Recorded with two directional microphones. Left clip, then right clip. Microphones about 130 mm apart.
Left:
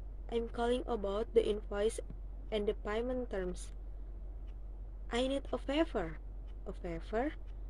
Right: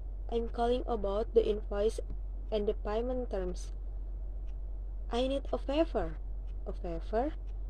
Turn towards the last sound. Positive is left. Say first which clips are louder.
# right 3 dB
turn(degrees=20)  # may be behind; listen again after turning